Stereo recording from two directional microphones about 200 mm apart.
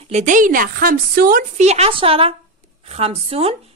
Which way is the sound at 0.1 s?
40° right (ahead or behind).